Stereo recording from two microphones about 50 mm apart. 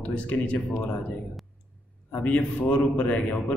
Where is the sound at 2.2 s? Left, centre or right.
Left.